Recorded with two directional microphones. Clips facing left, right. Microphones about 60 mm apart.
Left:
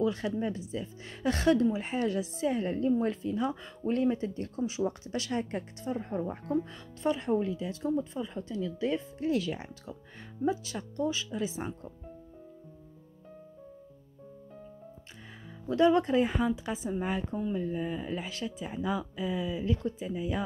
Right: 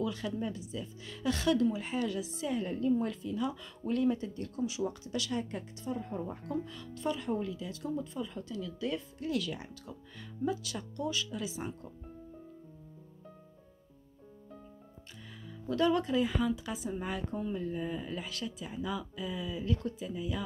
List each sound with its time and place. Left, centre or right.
0.0 s a woman's voice: left
6.5 s a woman's voice: left
15.7 s a woman's voice: left